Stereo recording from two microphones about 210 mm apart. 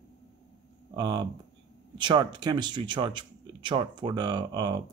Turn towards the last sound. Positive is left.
turn(degrees=-20)  # may be behind; listen again after turning